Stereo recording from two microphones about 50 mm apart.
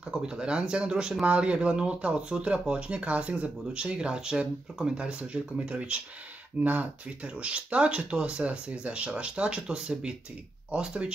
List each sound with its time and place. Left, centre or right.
0.1 s speech: centre